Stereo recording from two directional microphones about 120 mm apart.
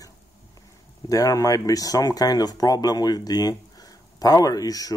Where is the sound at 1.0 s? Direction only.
30° left (ahead or behind).